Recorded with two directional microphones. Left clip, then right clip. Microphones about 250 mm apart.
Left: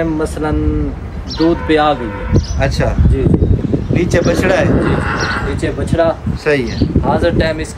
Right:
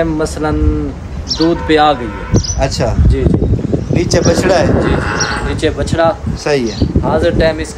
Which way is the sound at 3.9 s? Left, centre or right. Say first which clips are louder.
Right 2 dB; centre.